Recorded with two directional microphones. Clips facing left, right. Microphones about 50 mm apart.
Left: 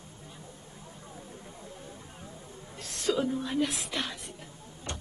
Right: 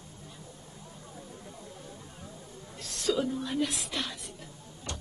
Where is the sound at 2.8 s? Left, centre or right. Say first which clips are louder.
Even; left.